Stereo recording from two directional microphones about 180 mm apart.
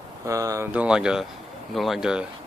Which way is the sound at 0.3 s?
20° right (ahead or behind).